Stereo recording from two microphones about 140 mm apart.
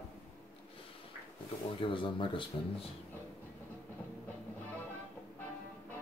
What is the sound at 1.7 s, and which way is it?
Speech, 35° left (ahead or behind).